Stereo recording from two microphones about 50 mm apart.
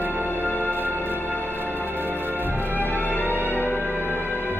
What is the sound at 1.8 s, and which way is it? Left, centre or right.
Music, right.